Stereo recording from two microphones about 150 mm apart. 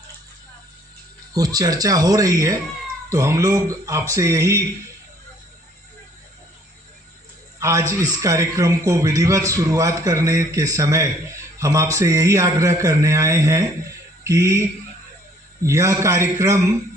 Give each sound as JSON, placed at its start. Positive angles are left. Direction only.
{"t": 1.3, "sound": "a man's voice", "side_deg": -25}
{"t": 7.5, "sound": "a sound", "side_deg": -20}
{"t": 8.1, "sound": "a man's voice", "side_deg": -20}